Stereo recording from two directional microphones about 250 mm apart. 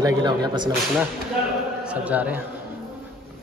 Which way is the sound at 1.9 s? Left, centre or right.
Centre.